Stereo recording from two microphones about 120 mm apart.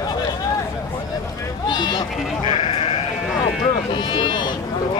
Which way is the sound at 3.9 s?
40° left (ahead or behind).